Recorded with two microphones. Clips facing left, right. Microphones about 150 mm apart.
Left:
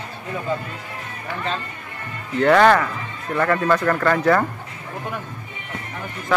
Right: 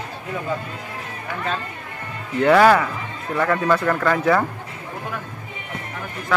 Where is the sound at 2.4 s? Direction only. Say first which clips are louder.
Even; 5° right (ahead or behind).